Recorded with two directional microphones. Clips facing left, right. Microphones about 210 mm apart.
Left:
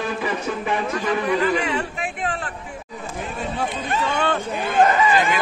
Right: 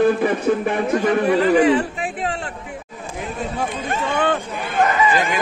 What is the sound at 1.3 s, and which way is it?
Speech, 30° right (ahead or behind).